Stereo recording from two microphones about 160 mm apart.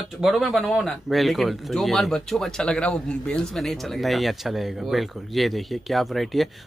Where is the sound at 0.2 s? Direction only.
Centre (ahead or behind).